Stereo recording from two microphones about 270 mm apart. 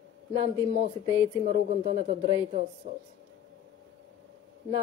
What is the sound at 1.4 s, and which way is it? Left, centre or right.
A woman's voice, right.